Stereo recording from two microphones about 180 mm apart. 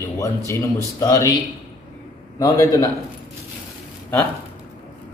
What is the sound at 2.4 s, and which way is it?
Speech, 15° left (ahead or behind).